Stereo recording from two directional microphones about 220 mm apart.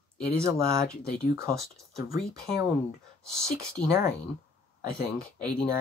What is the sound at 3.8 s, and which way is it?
Speech, 40° left (ahead or behind).